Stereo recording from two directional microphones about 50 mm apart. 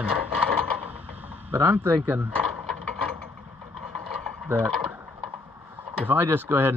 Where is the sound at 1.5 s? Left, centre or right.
Right.